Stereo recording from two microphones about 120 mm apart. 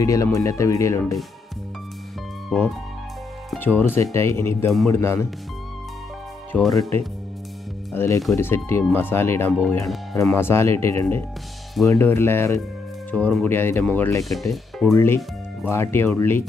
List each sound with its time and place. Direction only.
0.0 s speech: 25° left (ahead or behind)
2.5 s speech: 5° left (ahead or behind)
3.5 s speech: 15° left (ahead or behind)
6.6 s speech: centre (ahead or behind)
7.9 s speech: 20° left (ahead or behind)
13.1 s speech: 10° left (ahead or behind)
14.3 s speech: centre (ahead or behind)
15.0 s speech: 20° left (ahead or behind)